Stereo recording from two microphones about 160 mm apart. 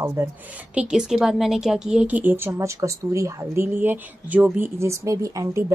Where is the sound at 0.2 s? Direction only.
15° right (ahead or behind).